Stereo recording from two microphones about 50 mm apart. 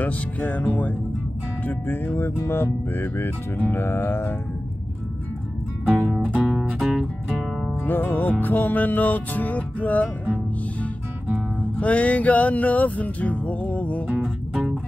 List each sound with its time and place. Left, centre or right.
0.0 s music: left
6.0 s music: centre
6.8 s music: centre
7.8 s music: left
11.8 s music: left